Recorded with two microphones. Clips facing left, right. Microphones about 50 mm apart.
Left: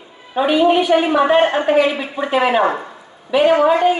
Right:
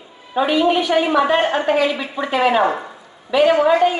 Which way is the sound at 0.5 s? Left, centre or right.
Centre.